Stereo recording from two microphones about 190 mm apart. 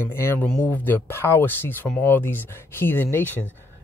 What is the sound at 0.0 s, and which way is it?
Speech, 10° left (ahead or behind).